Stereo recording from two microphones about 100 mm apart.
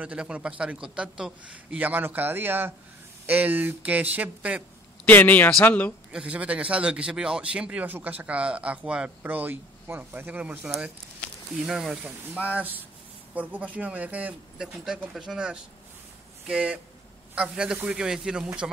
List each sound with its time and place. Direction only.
0.0 s a man's voice: 10° right (ahead or behind)
5.0 s speech: 15° left (ahead or behind)
6.1 s a man's voice: 15° right (ahead or behind)
11.6 s speech: 5° right (ahead or behind)
12.4 s a man's voice: 15° right (ahead or behind)